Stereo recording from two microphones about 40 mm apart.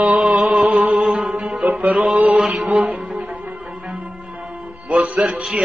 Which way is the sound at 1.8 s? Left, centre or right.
Centre.